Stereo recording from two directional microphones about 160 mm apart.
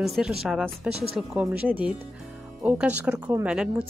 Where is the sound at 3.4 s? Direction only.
5° right (ahead or behind).